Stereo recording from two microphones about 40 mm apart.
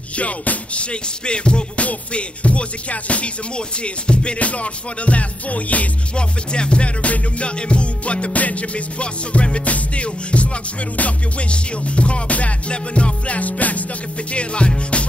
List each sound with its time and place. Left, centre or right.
0.1 s music: left
6.1 s music: left
14.3 s music: left